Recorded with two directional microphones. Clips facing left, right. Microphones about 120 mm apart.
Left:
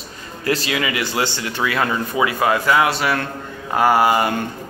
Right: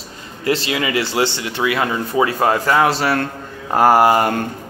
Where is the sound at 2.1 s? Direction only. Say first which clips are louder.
Right 3 dB; 35° right (ahead or behind).